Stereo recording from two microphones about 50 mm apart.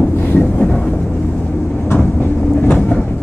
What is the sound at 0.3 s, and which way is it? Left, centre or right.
Train, left.